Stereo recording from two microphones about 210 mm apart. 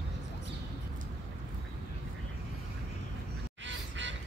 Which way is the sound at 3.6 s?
60° right (ahead or behind).